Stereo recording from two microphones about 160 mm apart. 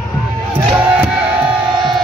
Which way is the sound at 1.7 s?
30° right (ahead or behind).